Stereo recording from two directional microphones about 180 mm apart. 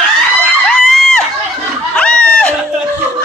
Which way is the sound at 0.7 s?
5° left (ahead or behind).